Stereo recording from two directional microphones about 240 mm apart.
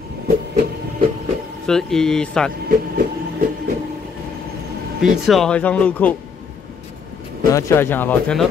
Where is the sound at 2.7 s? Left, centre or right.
Right.